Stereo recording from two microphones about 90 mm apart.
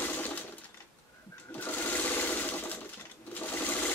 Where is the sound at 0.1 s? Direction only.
20° left (ahead or behind).